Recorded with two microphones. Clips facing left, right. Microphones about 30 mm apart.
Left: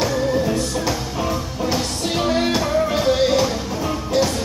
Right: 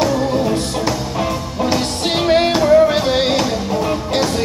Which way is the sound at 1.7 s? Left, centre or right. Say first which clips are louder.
Right 4 dB; right.